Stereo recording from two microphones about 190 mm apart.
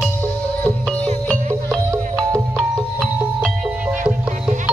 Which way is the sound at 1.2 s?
5° left (ahead or behind).